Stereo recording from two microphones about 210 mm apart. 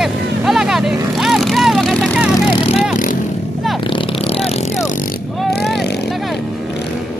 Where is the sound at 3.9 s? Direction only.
25° left (ahead or behind).